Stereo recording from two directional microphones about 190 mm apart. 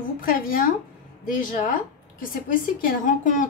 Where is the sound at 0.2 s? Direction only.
45° left (ahead or behind).